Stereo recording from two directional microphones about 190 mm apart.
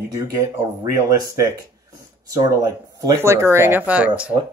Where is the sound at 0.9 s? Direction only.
20° right (ahead or behind).